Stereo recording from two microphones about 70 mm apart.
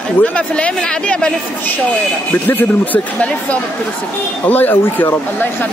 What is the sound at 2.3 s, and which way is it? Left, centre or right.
Music, left.